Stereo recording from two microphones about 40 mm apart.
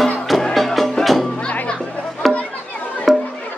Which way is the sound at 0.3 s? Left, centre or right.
Centre.